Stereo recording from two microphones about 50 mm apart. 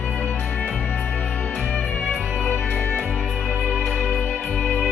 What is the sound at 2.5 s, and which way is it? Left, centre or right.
Music, left.